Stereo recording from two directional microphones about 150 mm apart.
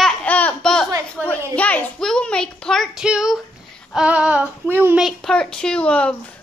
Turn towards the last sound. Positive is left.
turn(degrees=10)  # may be behind; listen again after turning